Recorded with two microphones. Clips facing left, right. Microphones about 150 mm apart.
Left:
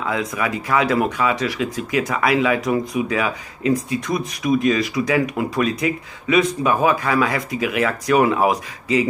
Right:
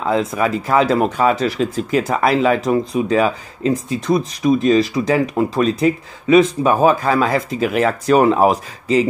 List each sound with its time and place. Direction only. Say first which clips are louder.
0.0 s speech: right 5 dB; 30° right (ahead or behind)